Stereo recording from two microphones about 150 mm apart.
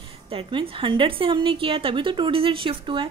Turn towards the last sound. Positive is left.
turn(degrees=-35)  # may be behind; listen again after turning